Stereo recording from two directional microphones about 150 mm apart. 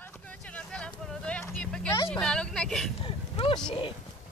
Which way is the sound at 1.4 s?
10° left (ahead or behind).